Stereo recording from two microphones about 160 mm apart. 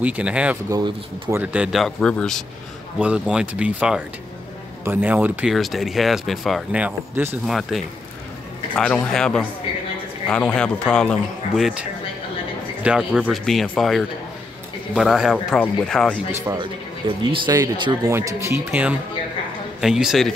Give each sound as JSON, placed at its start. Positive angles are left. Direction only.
{"t": 0.0, "sound": "speech", "side_deg": -10}
{"t": 0.7, "sound": "speech", "side_deg": -20}
{"t": 1.4, "sound": "speech", "side_deg": -5}
{"t": 8.7, "sound": "speech", "side_deg": 5}
{"t": 12.8, "sound": "speech", "side_deg": -5}
{"t": 17.2, "sound": "speech", "side_deg": -25}